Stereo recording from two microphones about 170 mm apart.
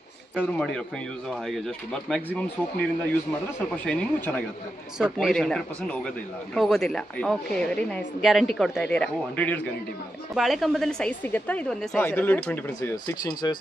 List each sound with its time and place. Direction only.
0.4 s speech: 5° left (ahead or behind)
2.0 s speech: 5° left (ahead or behind)
3.8 s speech: 5° left (ahead or behind)
12.9 s speech: 25° left (ahead or behind)